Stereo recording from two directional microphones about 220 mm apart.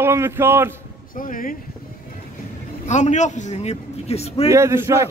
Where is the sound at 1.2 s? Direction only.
40° left (ahead or behind).